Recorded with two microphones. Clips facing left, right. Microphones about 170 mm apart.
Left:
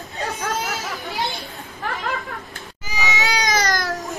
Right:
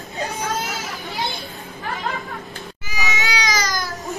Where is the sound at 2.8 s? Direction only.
40° left (ahead or behind).